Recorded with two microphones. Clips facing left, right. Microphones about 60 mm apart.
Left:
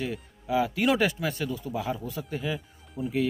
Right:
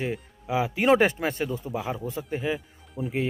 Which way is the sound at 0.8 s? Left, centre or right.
Right.